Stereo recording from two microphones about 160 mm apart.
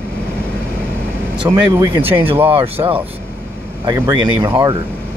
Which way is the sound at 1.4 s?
20° right (ahead or behind).